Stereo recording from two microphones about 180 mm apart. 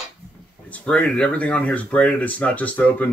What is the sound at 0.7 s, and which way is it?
Speech, 5° left (ahead or behind).